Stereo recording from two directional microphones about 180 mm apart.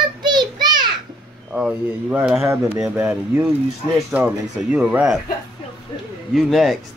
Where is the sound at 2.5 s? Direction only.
15° right (ahead or behind).